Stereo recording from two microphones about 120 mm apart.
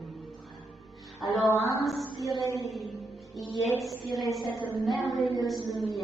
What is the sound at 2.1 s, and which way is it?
Speech, 30° left (ahead or behind).